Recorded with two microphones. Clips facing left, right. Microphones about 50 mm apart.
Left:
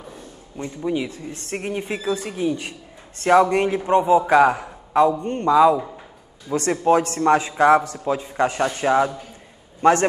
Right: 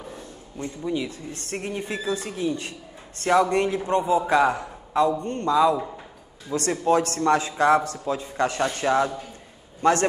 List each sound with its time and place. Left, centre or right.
0.6 s a man's voice: left